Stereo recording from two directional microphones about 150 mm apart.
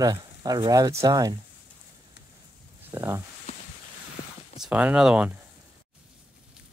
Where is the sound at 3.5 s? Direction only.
45° left (ahead or behind).